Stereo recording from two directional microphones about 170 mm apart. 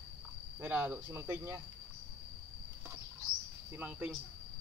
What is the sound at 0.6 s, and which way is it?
Speech, 10° right (ahead or behind).